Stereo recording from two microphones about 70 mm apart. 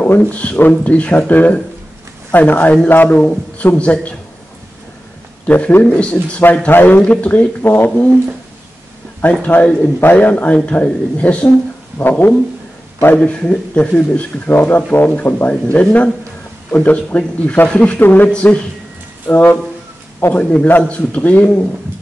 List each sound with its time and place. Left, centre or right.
0.2 s a man's voice: centre
5.5 s a man's voice: left
9.3 s a man's voice: left
12.0 s speech: left
13.2 s a man's voice: centre